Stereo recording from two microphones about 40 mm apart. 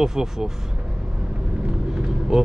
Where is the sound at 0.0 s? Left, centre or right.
Centre.